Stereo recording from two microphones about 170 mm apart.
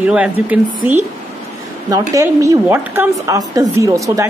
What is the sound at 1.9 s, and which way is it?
A woman's voice, 20° right (ahead or behind).